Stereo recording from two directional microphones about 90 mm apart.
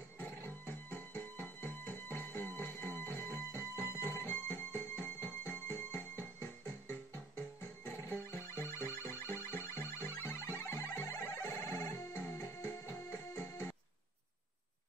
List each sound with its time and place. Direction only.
0.7 s music: 20° left (ahead or behind)
3.7 s music: 25° right (ahead or behind)
4.1 s music: 25° left (ahead or behind)